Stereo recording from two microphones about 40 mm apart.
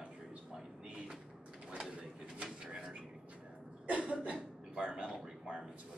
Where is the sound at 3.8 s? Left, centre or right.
Right.